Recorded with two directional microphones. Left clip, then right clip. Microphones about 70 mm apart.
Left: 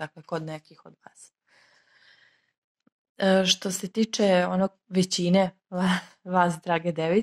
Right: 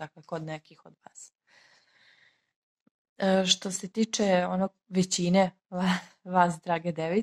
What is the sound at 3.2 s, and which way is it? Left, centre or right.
Speech, left.